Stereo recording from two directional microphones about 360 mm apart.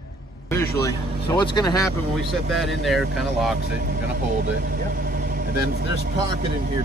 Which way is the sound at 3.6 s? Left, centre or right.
Right.